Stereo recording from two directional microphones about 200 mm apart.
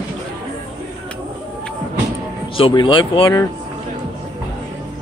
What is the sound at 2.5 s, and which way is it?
Speech, 25° left (ahead or behind).